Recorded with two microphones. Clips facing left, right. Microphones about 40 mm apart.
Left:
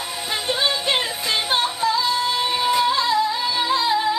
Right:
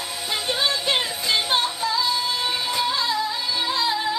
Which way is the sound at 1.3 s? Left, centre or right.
Centre.